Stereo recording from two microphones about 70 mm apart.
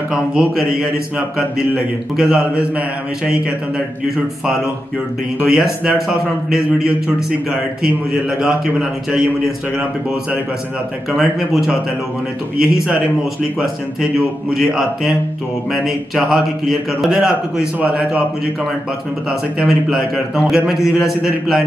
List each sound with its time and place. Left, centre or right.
0.1 s a man's voice: centre
2.1 s a man's voice: centre
5.4 s a man's voice: centre
11.1 s a man's voice: centre
14.5 s a man's voice: centre
17.2 s a man's voice: centre
19.6 s a man's voice: centre